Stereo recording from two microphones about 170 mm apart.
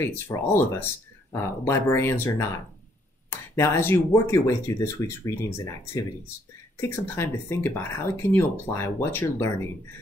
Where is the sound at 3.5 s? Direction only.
15° left (ahead or behind).